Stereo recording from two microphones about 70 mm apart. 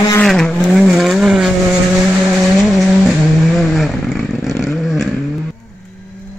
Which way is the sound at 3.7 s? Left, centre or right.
Centre.